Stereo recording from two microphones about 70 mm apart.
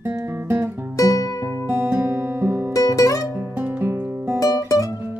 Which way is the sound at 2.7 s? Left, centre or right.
Left.